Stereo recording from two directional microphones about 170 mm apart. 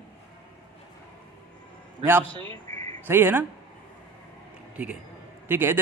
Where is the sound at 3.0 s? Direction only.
15° right (ahead or behind).